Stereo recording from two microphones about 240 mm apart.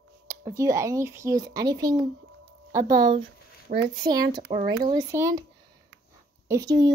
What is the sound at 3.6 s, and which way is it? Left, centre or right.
Speech, right.